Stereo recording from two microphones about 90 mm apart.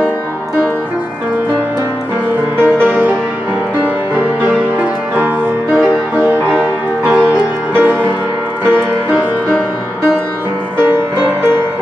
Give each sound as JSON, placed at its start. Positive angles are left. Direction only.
{"t": 2.6, "sound": "music", "side_deg": -20}
{"t": 5.8, "sound": "music", "side_deg": -20}